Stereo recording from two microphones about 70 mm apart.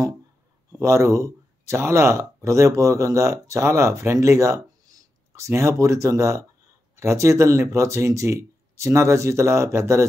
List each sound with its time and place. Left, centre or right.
0.7 s speech: right